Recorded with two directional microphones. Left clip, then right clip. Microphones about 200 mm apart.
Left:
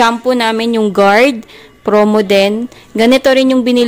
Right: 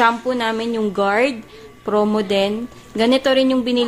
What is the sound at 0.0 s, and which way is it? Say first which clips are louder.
A woman's voice: left 6 dB; 45° left (ahead or behind).